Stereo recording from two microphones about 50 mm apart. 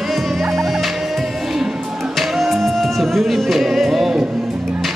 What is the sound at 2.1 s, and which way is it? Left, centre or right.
Music, centre.